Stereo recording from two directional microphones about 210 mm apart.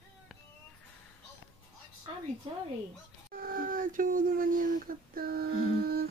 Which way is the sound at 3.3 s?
45° right (ahead or behind).